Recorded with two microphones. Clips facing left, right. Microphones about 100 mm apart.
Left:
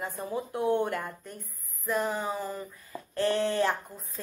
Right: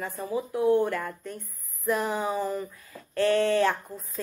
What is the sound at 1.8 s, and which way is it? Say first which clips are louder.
Speech: right 3 dB; centre (ahead or behind).